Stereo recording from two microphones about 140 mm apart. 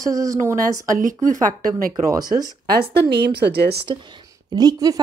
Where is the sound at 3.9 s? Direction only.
35° right (ahead or behind).